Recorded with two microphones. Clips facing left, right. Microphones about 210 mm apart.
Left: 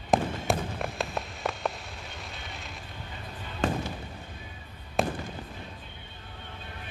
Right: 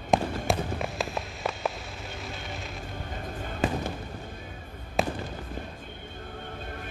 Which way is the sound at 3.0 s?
45° right (ahead or behind).